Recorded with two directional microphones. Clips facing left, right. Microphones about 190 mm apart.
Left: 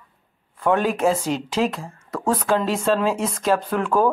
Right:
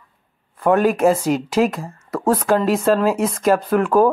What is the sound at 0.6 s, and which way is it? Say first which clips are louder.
Speech: right 4 dB; 5° right (ahead or behind).